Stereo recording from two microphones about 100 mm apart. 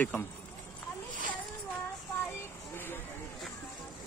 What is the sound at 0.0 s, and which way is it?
Speech, 20° left (ahead or behind).